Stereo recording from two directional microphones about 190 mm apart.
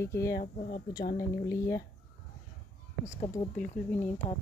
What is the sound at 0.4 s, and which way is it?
Speech, 50° left (ahead or behind).